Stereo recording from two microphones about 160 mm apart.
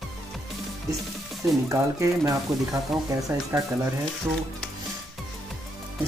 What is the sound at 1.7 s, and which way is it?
Speech, 20° right (ahead or behind).